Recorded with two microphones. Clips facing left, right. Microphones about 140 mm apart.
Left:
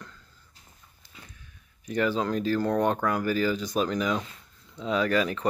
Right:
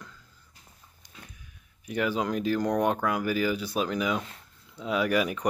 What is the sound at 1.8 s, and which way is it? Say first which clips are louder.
Speech: left 2 dB; 10° right (ahead or behind).